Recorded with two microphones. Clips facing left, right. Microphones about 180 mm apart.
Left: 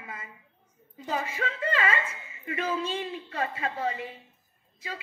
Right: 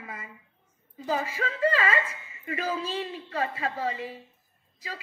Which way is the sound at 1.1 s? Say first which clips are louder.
Right 2 dB; 35° right (ahead or behind).